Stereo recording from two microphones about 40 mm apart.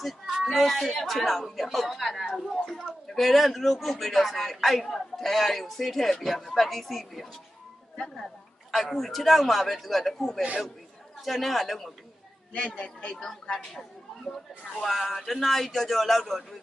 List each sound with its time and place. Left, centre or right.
0.0 s speech: centre
2.3 s a sound: centre
3.2 s speech: centre
8.7 s speech: centre
12.5 s a man's voice: left
13.1 s speech: centre
14.8 s speech: centre